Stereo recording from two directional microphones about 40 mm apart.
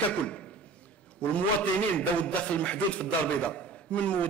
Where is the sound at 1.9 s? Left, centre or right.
Left.